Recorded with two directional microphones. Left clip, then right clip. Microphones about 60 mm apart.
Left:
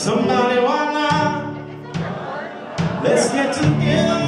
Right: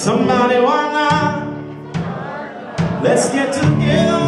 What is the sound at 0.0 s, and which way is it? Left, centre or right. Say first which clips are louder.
Music: right 3 dB; right.